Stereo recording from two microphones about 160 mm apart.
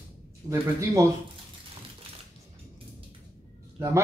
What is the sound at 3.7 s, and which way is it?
Speech, 15° right (ahead or behind).